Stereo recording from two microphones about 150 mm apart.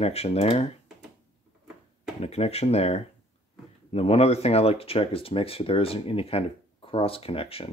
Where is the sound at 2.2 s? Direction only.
45° left (ahead or behind).